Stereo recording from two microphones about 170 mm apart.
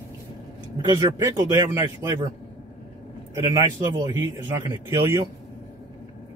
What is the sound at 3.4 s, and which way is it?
Speech, 15° right (ahead or behind).